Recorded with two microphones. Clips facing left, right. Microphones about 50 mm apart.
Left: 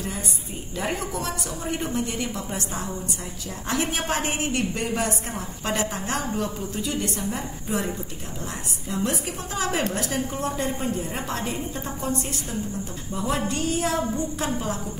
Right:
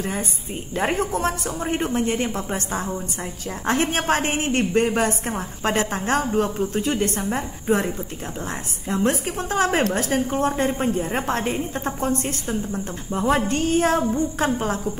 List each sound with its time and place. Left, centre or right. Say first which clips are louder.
0.7 s a woman's voice: right 6 dB; right